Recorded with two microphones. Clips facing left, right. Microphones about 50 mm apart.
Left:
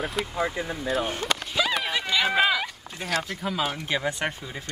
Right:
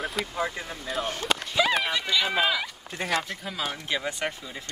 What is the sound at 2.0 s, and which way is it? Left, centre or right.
Speech, centre.